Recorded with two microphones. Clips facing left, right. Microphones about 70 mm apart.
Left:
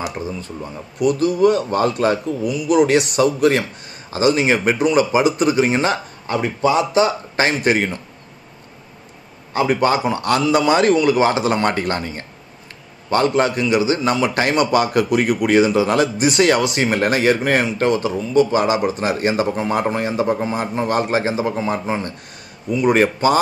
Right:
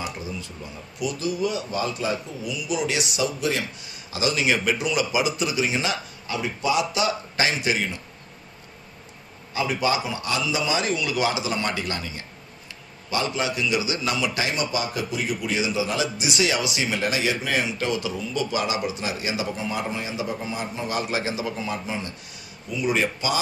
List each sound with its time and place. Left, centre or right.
0.2 s a man's voice: left
9.5 s a man's voice: left